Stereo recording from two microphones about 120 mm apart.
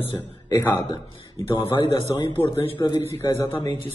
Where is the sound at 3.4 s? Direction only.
35° left (ahead or behind).